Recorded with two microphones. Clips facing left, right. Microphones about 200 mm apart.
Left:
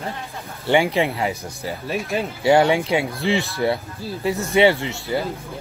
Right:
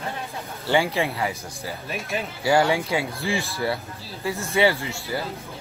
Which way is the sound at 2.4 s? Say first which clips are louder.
Left 4 dB; 20° left (ahead or behind).